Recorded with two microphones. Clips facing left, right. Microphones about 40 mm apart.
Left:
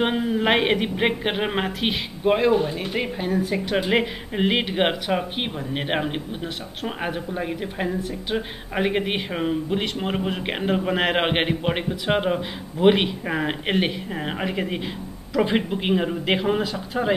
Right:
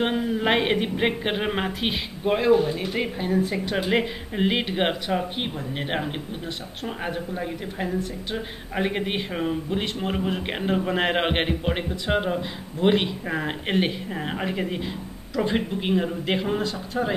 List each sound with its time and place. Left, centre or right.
0.0 s speech: centre
3.3 s a woman's voice: centre
3.5 s speech: centre